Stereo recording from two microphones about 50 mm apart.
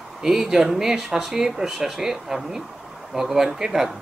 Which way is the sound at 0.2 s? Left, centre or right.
Centre.